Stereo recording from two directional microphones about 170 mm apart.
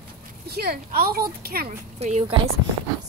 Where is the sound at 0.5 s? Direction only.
65° right (ahead or behind).